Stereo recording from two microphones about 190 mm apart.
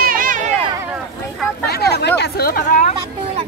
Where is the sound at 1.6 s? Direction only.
60° left (ahead or behind).